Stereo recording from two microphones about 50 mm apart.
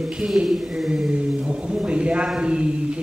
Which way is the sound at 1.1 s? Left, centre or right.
Centre.